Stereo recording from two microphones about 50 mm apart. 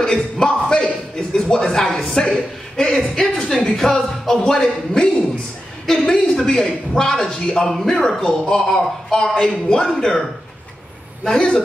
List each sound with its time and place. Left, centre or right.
0.0 s a sound: centre
1.5 s a man's voice: centre
11.3 s a man's voice: centre